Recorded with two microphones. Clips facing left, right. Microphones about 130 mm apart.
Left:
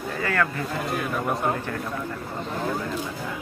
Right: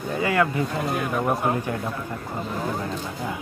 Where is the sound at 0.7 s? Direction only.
Centre (ahead or behind).